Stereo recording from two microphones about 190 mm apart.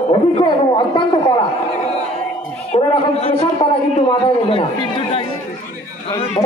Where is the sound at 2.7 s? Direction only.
30° left (ahead or behind).